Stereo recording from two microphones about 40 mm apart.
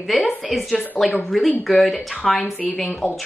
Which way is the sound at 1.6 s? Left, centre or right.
Centre.